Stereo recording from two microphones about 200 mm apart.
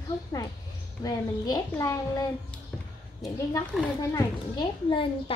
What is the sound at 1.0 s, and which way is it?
A child's voice, 20° left (ahead or behind).